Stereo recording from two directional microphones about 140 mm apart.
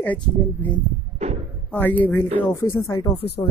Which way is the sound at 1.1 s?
50° right (ahead or behind).